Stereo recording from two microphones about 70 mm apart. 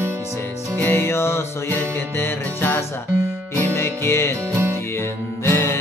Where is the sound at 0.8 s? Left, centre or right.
Left.